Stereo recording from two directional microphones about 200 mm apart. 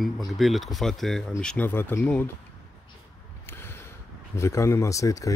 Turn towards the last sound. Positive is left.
turn(degrees=15)  # may be behind; listen again after turning